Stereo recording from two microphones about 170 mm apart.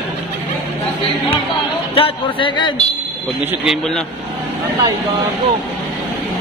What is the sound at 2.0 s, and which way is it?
Speech, 30° left (ahead or behind).